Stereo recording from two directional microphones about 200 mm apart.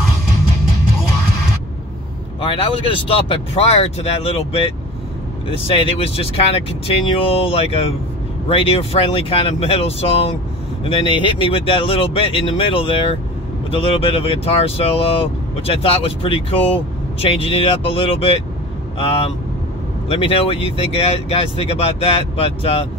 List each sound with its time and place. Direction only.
2.5 s speech: 25° left (ahead or behind)